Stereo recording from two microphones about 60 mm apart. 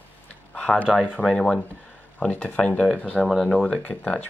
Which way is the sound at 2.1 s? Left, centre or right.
Left.